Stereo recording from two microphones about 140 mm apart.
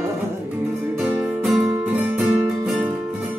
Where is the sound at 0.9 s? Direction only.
10° right (ahead or behind).